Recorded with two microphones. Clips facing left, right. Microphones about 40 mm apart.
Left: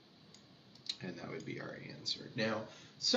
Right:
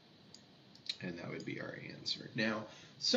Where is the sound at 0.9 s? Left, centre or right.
Centre.